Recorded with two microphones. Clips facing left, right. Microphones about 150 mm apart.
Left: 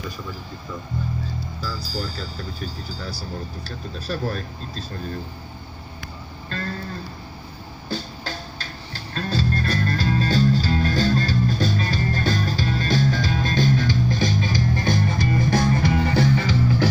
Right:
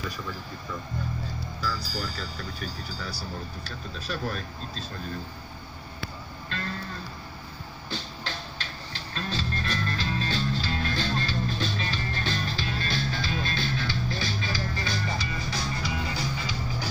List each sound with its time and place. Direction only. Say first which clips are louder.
1.6 s speech: left 1 dB; 30° left (ahead or behind)
7.9 s music: left 6 dB; 40° left (ahead or behind); by 16.9 s 70° left (ahead or behind)